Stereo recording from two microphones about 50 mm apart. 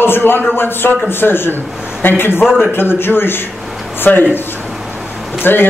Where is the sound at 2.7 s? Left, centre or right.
Left.